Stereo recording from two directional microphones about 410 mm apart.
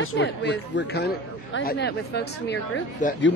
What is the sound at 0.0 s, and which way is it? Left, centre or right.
Speech, left.